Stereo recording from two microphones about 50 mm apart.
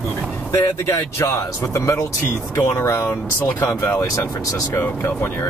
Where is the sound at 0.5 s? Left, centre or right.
Left.